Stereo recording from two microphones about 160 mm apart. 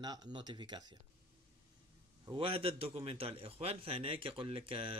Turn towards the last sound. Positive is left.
turn(degrees=-35)  # may be behind; listen again after turning